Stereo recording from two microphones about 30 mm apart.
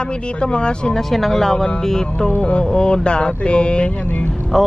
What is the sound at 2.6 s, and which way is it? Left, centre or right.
Speech, left.